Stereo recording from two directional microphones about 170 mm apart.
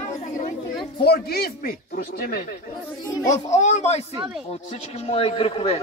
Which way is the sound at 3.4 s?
45° left (ahead or behind).